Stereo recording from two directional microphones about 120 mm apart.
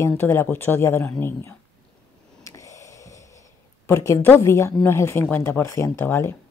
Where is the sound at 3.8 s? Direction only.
25° left (ahead or behind).